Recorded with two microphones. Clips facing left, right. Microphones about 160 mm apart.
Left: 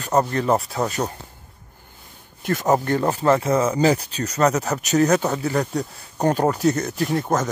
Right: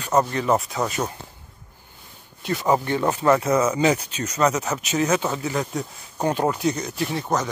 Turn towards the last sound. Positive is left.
turn(degrees=50)  # may be behind; listen again after turning